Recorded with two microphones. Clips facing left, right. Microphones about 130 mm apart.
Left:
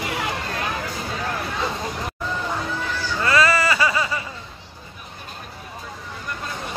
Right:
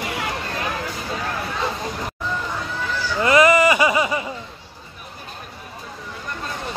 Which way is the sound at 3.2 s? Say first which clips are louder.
Right 5 dB; 20° right (ahead or behind).